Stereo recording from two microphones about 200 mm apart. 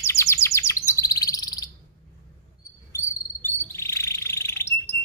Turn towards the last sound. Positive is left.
turn(degrees=10)  # may be behind; listen again after turning